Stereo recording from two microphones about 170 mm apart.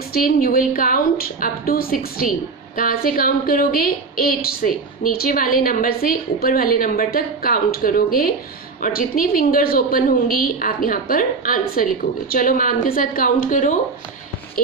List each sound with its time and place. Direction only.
0.1 s a woman's voice: 60° left (ahead or behind)